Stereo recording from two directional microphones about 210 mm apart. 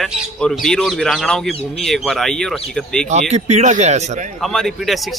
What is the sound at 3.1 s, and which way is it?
Speech, 35° right (ahead or behind).